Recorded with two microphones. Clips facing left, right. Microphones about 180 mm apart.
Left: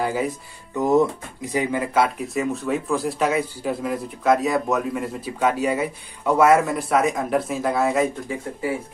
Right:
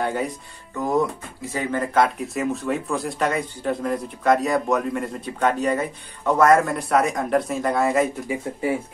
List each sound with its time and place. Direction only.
0.0 s speech: centre (ahead or behind)
0.7 s speech: 20° left (ahead or behind); by 8.1 s centre (ahead or behind)
8.3 s speech: 20° right (ahead or behind)